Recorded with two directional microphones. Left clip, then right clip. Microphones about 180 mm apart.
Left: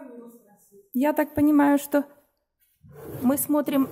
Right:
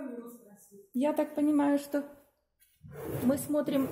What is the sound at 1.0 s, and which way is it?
Speech, 35° left (ahead or behind).